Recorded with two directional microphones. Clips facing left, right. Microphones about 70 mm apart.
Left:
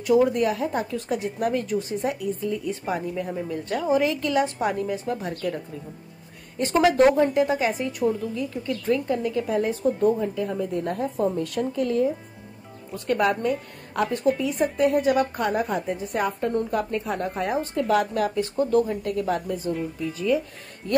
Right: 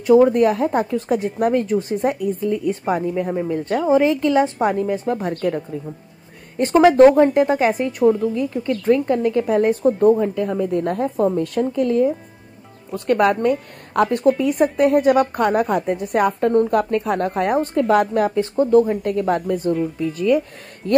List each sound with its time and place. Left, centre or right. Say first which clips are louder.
0.0 s speech: right 7 dB; right
6.6 s a woman's voice: right 7 dB; right